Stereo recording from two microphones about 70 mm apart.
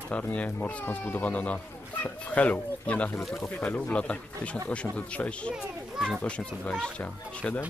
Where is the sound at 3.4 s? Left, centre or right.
Left.